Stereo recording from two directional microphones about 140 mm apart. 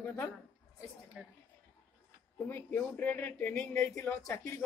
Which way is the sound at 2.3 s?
15° left (ahead or behind).